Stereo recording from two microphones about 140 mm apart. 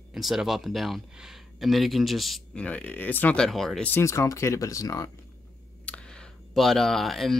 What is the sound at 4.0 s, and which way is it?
Speech, 20° left (ahead or behind).